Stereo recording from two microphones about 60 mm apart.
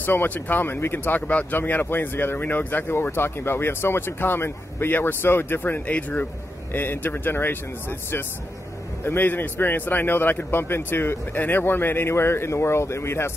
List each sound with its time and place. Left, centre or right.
0.0 s speech: left
9.0 s speech: left